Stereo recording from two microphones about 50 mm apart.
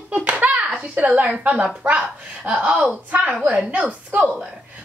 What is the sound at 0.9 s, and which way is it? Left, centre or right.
Speech, right.